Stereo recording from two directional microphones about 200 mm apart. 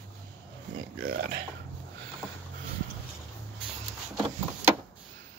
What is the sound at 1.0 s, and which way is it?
Speech, 60° right (ahead or behind).